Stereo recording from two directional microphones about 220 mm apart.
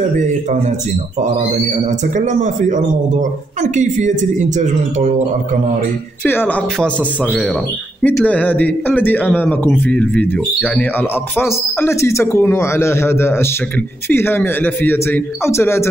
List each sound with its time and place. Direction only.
1.2 s a man's voice: 30° right (ahead or behind)
6.2 s speech: 10° left (ahead or behind)
8.0 s speech: 5° left (ahead or behind)